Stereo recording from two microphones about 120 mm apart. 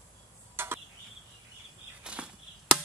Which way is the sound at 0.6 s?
20° right (ahead or behind).